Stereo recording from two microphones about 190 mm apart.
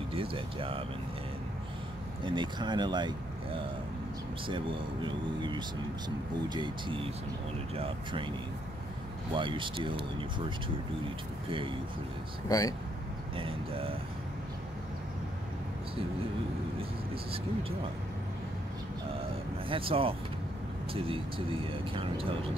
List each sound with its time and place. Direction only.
0.1 s speech: 30° right (ahead or behind)
2.2 s speech: 25° right (ahead or behind)
4.5 s speech: 25° right (ahead or behind)
9.3 s speech: 25° right (ahead or behind)
12.4 s speech: 20° left (ahead or behind)
13.4 s speech: 30° right (ahead or behind)
17.1 s speech: 30° right (ahead or behind)
19.7 s speech: 30° right (ahead or behind)